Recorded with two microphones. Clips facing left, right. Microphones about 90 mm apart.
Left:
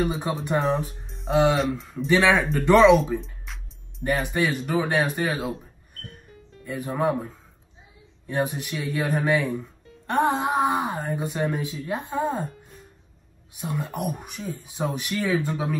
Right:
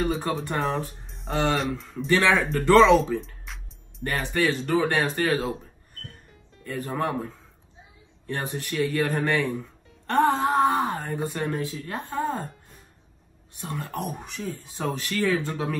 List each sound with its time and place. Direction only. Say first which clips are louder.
0.1 s speech: left 1 dB; 10° left (ahead or behind)
2.6 s speech: left 1 dB; 15° left (ahead or behind)
3.5 s music: even; centre (ahead or behind)
4.0 s speech: left 1 dB; 10° left (ahead or behind)
6.6 s speech: left 3 dB; 15° left (ahead or behind)
13.6 s speech: left 2 dB; 15° left (ahead or behind)